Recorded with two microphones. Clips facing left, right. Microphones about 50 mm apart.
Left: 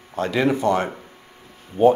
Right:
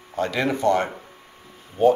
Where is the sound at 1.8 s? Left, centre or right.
Centre.